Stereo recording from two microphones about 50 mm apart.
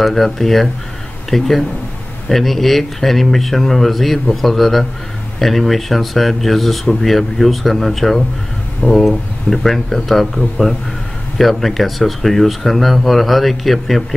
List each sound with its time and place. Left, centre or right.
0.0 s speech: centre